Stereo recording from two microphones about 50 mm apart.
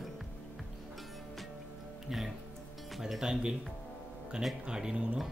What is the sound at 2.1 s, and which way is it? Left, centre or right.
Speech, centre.